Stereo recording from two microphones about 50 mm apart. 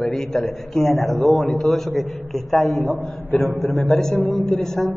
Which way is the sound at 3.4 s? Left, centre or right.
Right.